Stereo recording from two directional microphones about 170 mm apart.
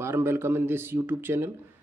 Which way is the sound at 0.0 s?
15° right (ahead or behind).